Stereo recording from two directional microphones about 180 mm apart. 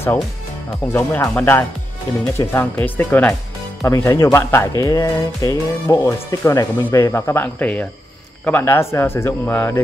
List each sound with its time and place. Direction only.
0.9 s speech: 15° left (ahead or behind)